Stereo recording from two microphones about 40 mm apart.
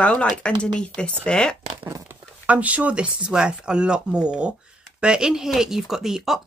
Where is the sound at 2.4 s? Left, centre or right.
Right; by 5.5 s centre.